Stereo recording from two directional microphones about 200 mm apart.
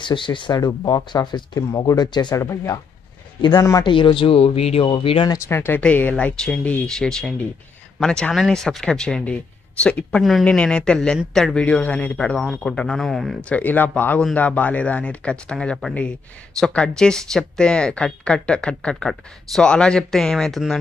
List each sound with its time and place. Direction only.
0.0 s speech: 25° left (ahead or behind)
5.5 s speech: 10° left (ahead or behind)